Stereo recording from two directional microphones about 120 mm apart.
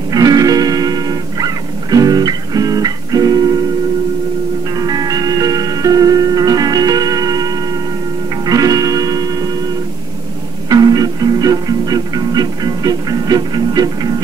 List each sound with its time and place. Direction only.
0.1 s music: 30° right (ahead or behind)
4.7 s music: 30° right (ahead or behind)
8.5 s music: 30° right (ahead or behind)
10.7 s music: 30° right (ahead or behind)